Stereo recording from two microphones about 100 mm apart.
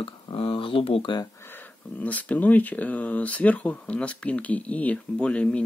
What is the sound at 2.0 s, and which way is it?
Speech, 15° left (ahead or behind).